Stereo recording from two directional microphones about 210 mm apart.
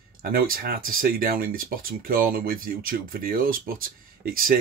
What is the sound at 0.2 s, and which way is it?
Speech, 45° right (ahead or behind).